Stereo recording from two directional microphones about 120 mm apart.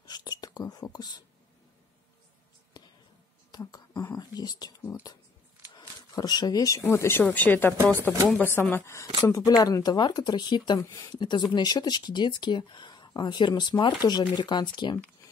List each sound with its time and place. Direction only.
0.0 s speech: 35° left (ahead or behind)
2.8 s whispering: 35° left (ahead or behind)
3.5 s a sound: 35° left (ahead or behind)
5.8 s a sound: 35° left (ahead or behind)
6.8 s speech: 20° left (ahead or behind)
7.7 s speech: 20° right (ahead or behind)
8.3 s speech: 15° left (ahead or behind)
9.6 s speech: 30° left (ahead or behind)
10.8 s speech: 20° left (ahead or behind)
11.1 s speech: 40° left (ahead or behind)